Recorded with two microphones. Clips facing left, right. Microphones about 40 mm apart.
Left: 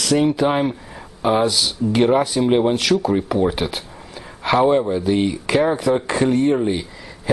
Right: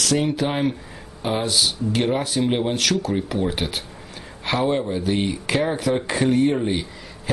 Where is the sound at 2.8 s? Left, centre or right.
Left.